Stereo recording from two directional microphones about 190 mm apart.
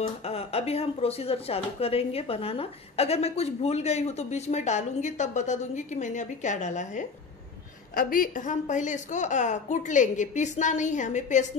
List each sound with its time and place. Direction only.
0.2 s a woman's voice: 30° left (ahead or behind)